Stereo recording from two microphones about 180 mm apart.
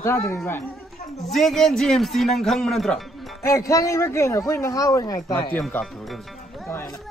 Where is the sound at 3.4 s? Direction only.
15° left (ahead or behind).